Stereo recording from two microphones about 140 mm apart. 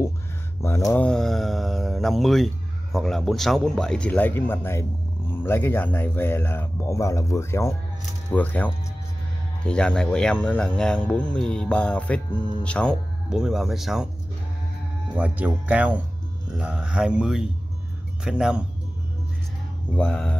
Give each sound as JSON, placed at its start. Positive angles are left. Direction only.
{"t": 0.6, "sound": "mantra", "side_deg": 20}
{"t": 0.9, "sound": "speech", "side_deg": 5}
{"t": 13.3, "sound": "mantra", "side_deg": -5}
{"t": 15.1, "sound": "speech", "side_deg": -10}
{"t": 16.5, "sound": "mantra", "side_deg": -5}
{"t": 20.0, "sound": "speech", "side_deg": 10}